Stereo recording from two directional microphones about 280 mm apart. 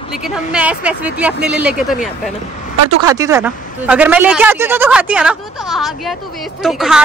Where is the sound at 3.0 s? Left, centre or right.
Centre.